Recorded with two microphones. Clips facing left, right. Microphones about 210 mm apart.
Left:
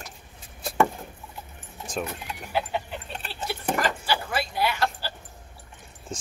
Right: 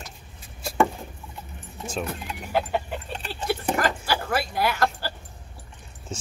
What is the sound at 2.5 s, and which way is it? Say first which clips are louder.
Dog: right 3 dB; 50° right (ahead or behind).